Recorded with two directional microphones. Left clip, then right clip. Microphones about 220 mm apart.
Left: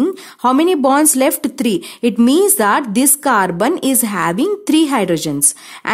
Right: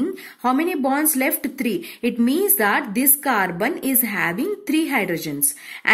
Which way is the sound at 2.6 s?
55° left (ahead or behind).